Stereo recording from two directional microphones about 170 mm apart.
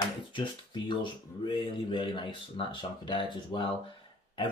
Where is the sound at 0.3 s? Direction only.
25° left (ahead or behind).